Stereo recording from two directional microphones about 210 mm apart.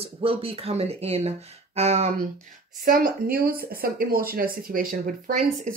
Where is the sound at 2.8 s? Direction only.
40° right (ahead or behind).